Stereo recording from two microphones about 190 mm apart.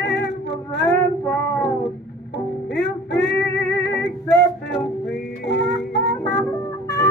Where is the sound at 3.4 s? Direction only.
15° left (ahead or behind).